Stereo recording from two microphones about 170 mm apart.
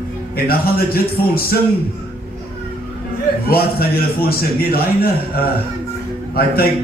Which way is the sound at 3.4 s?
65° left (ahead or behind).